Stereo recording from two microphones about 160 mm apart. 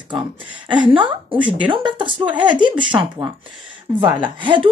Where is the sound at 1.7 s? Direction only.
30° right (ahead or behind).